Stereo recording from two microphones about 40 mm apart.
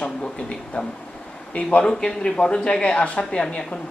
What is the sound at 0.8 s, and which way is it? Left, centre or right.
Speech, left.